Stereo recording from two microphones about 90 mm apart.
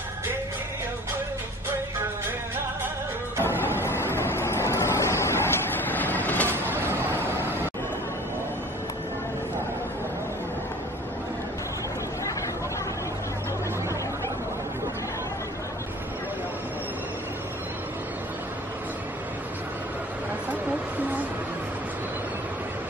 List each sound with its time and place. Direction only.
3.4 s vehicle: 25° left (ahead or behind)
6.5 s vehicle: 25° right (ahead or behind)